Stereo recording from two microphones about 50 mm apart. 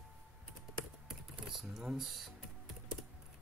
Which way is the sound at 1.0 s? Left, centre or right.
Centre.